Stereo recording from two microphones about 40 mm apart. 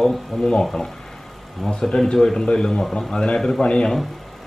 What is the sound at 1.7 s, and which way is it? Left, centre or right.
A man's voice, left.